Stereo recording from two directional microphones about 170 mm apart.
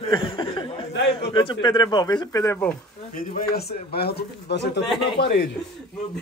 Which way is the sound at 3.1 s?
60° left (ahead or behind).